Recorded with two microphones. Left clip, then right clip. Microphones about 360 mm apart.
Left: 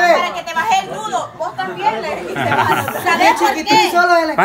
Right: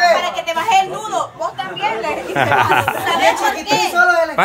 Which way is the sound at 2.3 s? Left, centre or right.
Centre.